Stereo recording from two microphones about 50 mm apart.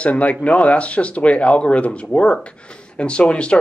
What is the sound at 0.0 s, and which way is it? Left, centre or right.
Speech, left.